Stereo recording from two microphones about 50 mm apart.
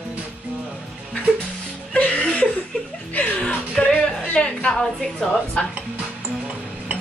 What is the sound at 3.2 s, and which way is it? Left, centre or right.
Music, left.